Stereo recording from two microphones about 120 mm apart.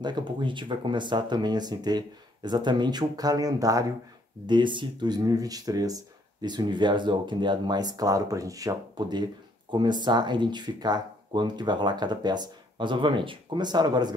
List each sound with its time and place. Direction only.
0.0 s speech: 40° right (ahead or behind)
4.5 s speech: 40° right (ahead or behind)